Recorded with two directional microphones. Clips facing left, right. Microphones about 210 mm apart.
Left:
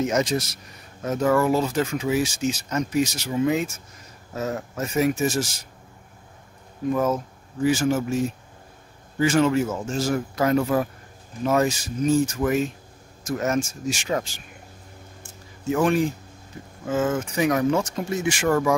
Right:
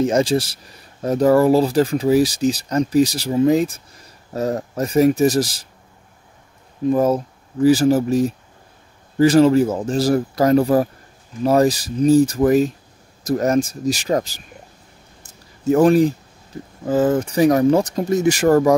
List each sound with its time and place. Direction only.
0.0 s speech: 30° right (ahead or behind)
6.9 s speech: 35° right (ahead or behind)
15.2 s a sound: 40° right (ahead or behind)
16.8 s speech: 35° right (ahead or behind)